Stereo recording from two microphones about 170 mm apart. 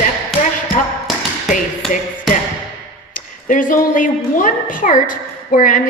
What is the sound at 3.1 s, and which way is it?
A woman's voice, 50° left (ahead or behind).